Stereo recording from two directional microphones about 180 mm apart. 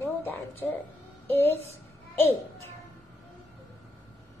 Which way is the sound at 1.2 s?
10° left (ahead or behind).